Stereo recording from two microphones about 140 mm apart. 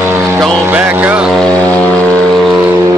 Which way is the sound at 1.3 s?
5° left (ahead or behind).